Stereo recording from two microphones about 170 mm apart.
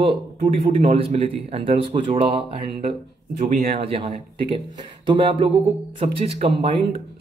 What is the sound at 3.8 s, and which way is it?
A man's voice, 35° right (ahead or behind).